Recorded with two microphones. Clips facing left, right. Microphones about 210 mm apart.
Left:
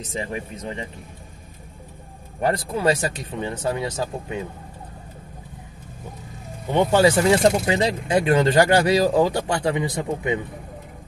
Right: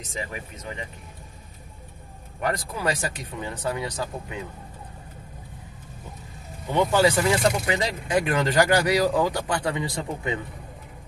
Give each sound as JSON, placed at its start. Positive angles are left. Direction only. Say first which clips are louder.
{"t": 0.0, "sound": "speech", "louder": "left 5 dB", "side_deg": 30}
{"t": 2.4, "sound": "speech", "louder": "left 6 dB", "side_deg": 25}
{"t": 6.7, "sound": "speech", "louder": "left 3 dB", "side_deg": 25}